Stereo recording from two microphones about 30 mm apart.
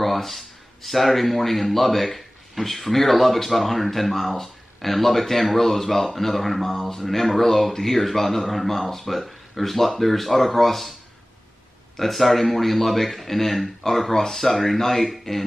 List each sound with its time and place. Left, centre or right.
0.0 s speech: centre
12.0 s speech: centre